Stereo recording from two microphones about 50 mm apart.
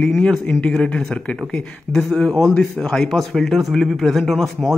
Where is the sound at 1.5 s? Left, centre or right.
Centre.